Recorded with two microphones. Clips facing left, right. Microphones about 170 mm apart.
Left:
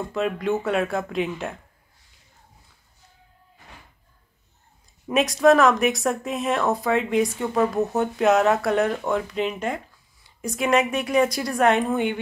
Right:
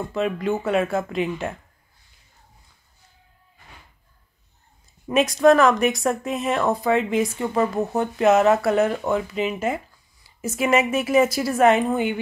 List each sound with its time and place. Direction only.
0.1 s speech: centre (ahead or behind)
5.0 s speech: centre (ahead or behind)